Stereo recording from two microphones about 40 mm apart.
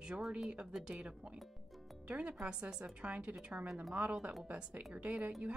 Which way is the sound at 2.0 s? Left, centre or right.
Right.